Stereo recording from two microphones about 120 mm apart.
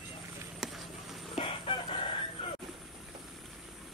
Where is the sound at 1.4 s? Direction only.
45° left (ahead or behind).